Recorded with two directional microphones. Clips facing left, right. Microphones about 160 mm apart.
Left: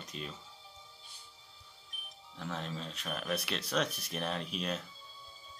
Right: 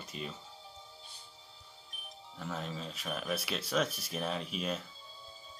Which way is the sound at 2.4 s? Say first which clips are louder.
Even; 5° right (ahead or behind).